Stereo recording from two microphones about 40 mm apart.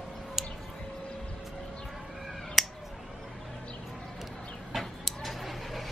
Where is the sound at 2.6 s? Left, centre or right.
Centre.